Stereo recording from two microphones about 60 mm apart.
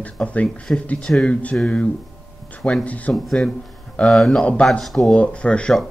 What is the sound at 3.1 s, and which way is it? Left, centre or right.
Speech, centre.